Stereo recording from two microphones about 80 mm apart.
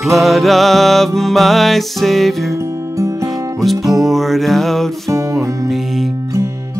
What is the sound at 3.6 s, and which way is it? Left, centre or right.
Music, centre.